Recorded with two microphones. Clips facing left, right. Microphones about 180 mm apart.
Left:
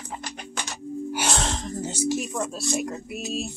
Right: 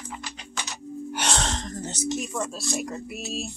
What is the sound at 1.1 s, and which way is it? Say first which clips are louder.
Speech: even; 5° left (ahead or behind).